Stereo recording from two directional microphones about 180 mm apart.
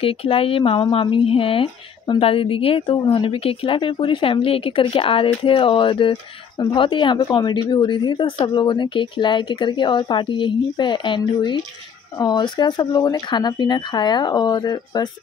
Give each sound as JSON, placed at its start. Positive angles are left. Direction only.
{"t": 0.0, "sound": "speech", "side_deg": 30}